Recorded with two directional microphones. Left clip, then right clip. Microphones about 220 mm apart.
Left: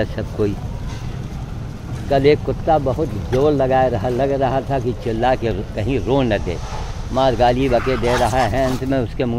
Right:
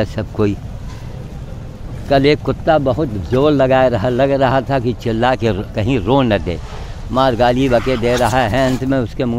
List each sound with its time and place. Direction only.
0.0 s speech: 30° right (ahead or behind)
2.0 s speech: 40° right (ahead or behind)